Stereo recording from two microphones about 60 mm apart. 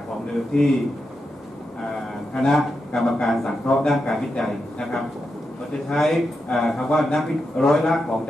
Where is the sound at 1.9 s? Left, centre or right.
Centre.